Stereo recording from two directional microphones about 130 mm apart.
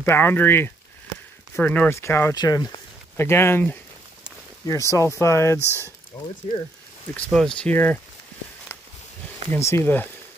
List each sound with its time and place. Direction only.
0.0 s speech: 15° left (ahead or behind)
2.3 s speech: 30° left (ahead or behind)
3.2 s speech: 20° left (ahead or behind)
6.5 s speech: 55° left (ahead or behind)
7.3 s speech: 5° left (ahead or behind)
9.5 s speech: 20° left (ahead or behind)